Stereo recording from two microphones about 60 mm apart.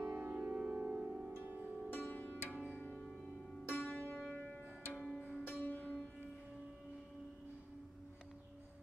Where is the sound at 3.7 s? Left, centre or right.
Left.